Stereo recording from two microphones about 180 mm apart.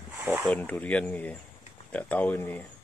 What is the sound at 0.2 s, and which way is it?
Speech, 10° right (ahead or behind).